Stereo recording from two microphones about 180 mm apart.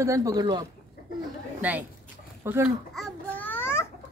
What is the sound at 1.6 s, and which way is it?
A woman's voice, 10° right (ahead or behind).